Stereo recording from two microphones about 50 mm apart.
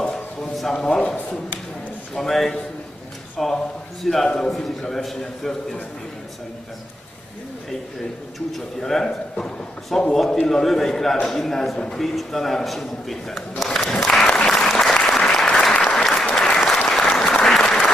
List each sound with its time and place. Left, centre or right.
0.0 s a sound: centre
0.7 s a man's voice: centre
2.1 s a man's voice: centre
8.5 s a man's voice: centre
14.2 s applause: centre